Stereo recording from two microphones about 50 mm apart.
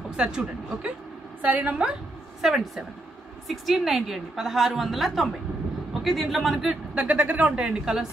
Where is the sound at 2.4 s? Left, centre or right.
Centre.